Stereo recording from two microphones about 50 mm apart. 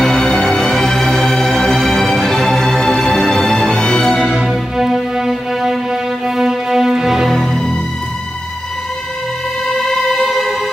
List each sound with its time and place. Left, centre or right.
0.0 s music: centre
4.3 s music: centre
7.3 s music: centre
9.7 s music: centre